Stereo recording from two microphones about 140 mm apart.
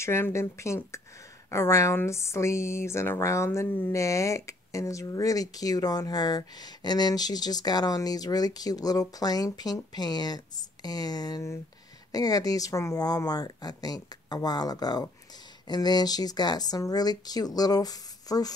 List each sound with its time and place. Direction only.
0.0 s speech: 20° left (ahead or behind)